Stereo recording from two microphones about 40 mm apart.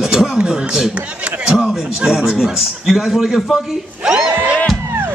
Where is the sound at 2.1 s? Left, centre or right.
Centre.